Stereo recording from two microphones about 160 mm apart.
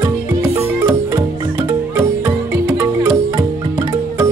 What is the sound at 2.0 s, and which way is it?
Music, 10° right (ahead or behind).